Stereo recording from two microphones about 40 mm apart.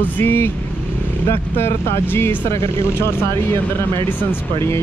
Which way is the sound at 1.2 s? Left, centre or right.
Left.